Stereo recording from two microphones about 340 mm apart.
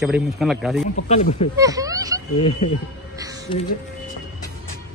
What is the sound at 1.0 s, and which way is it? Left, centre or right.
Speech, centre.